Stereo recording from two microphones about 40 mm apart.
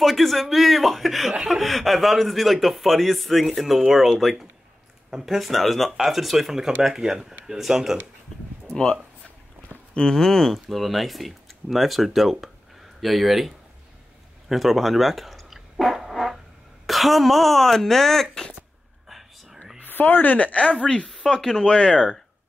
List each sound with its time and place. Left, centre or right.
0.0 s speech: centre
8.6 s speech: centre
9.9 s speech: centre
10.5 s speech: centre
14.5 s speech: centre
19.0 s whispering: centre
19.8 s speech: left
20.8 s speech: left
21.4 s speech: centre
21.6 s speech: left